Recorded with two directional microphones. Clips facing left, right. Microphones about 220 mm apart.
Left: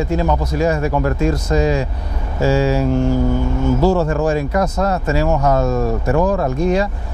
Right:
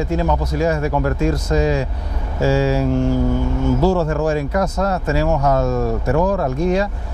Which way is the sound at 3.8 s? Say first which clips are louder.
Left 2 dB; 35° left (ahead or behind).